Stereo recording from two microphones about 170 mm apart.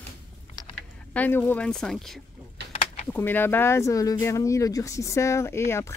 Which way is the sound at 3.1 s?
10° left (ahead or behind).